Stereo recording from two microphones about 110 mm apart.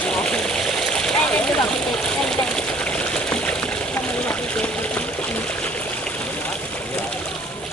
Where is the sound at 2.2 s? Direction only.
10° left (ahead or behind).